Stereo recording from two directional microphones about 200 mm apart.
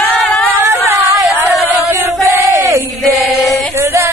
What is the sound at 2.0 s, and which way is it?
Crowd, 15° right (ahead or behind).